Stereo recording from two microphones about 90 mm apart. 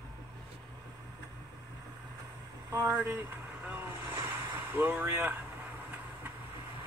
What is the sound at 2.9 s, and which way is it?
Speech, 20° right (ahead or behind).